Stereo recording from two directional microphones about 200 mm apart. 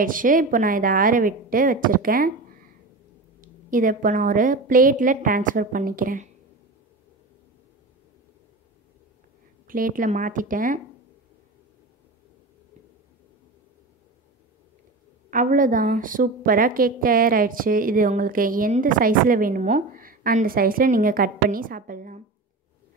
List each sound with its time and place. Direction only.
0.0 s a woman's voice: 45° right (ahead or behind)
3.3 s a woman's voice: 40° right (ahead or behind)
9.7 s a woman's voice: 45° right (ahead or behind)
15.2 s a woman's voice: 40° right (ahead or behind)